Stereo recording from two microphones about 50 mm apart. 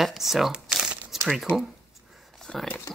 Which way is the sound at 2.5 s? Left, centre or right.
Centre.